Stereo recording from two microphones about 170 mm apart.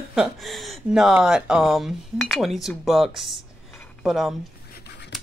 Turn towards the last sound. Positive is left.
turn(degrees=75)  # may be behind; listen again after turning